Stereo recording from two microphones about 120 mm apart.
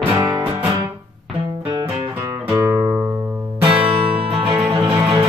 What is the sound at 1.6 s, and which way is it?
Music, 45° right (ahead or behind).